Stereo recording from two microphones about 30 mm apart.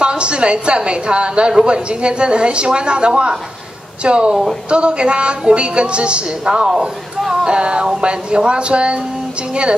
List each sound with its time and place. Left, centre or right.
0.0 s a woman's voice: right
6.4 s a woman's voice: right